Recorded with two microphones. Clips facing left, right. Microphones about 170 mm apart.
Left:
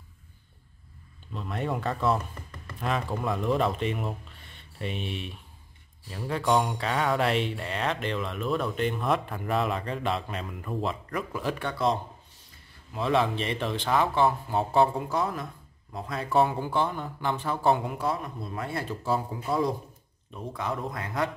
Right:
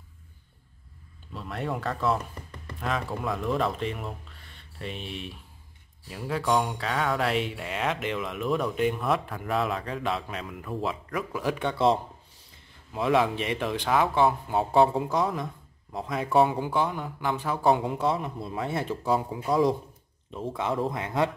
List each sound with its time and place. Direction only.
1.3 s speech: centre (ahead or behind)
11.5 s a man's voice: 25° right (ahead or behind)